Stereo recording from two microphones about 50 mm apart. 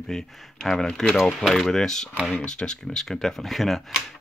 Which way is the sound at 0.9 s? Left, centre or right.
Centre.